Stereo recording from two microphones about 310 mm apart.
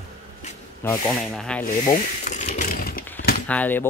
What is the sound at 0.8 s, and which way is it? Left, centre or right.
Speech, centre.